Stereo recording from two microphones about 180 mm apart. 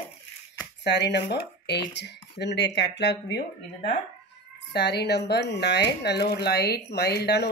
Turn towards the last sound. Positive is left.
turn(degrees=65)  # may be behind; listen again after turning